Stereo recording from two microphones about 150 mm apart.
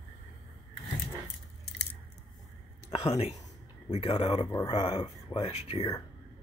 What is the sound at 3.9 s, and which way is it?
Speech, 40° left (ahead or behind).